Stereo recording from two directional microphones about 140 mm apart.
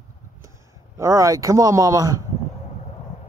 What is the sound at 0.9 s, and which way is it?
Speech, 20° right (ahead or behind).